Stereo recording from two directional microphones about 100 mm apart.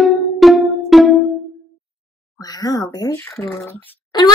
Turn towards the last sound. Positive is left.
turn(degrees=45)  # may be behind; listen again after turning